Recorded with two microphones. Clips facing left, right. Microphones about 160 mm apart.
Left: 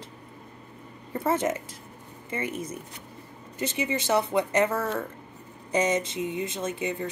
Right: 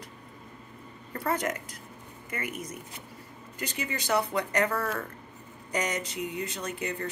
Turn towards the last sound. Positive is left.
turn(degrees=20)  # may be behind; listen again after turning